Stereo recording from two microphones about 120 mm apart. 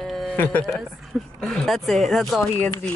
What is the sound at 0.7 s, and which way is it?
Speech, centre (ahead or behind).